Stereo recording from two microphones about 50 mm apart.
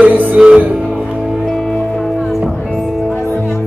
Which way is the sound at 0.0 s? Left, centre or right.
Right.